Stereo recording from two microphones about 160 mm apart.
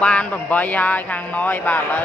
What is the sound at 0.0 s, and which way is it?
Speech, 10° left (ahead or behind).